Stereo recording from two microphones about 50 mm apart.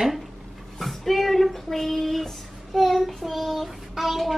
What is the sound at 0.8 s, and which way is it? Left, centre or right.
Child singing, centre.